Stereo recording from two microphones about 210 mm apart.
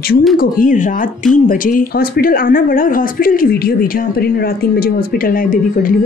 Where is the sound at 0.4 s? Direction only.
40° left (ahead or behind).